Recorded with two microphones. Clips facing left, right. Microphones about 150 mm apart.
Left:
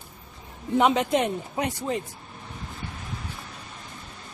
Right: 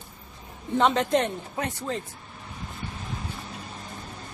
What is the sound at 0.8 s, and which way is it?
Speech, 5° left (ahead or behind).